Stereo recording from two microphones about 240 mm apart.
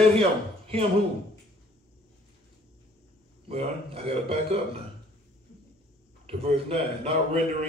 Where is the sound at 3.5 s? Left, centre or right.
Right.